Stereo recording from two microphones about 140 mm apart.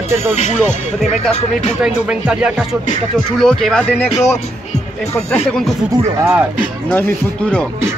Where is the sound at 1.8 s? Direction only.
5° right (ahead or behind).